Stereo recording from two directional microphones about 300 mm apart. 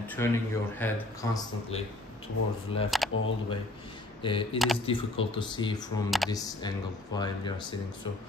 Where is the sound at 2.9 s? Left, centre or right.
Centre.